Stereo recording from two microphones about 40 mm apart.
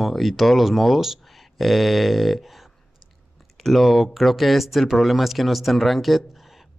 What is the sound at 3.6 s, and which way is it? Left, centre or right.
Speech, centre.